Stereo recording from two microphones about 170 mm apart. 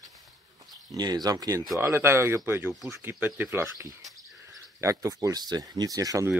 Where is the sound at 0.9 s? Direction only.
25° right (ahead or behind).